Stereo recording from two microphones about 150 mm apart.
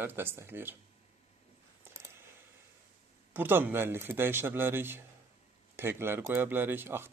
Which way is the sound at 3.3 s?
15° right (ahead or behind).